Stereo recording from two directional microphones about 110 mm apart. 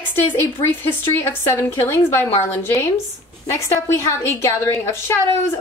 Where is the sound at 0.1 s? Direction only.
20° left (ahead or behind).